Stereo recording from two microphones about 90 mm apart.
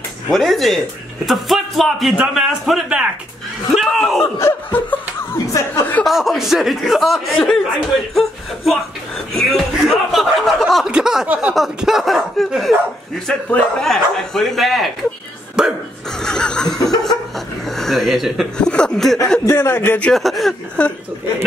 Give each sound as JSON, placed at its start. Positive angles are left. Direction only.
{"t": 0.3, "sound": "speech", "side_deg": 0}
{"t": 4.2, "sound": "laughter", "side_deg": 25}
{"t": 5.5, "sound": "speech", "side_deg": 40}
{"t": 6.0, "sound": "speech", "side_deg": 0}
{"t": 11.5, "sound": "speech", "side_deg": -5}
{"t": 16.2, "sound": "snicker", "side_deg": 10}
{"t": 17.6, "sound": "speech", "side_deg": 5}
{"t": 18.6, "sound": "speech", "side_deg": 10}
{"t": 19.4, "sound": "laughter", "side_deg": 30}
{"t": 20.1, "sound": "speech", "side_deg": 0}
{"t": 20.8, "sound": "speech", "side_deg": 15}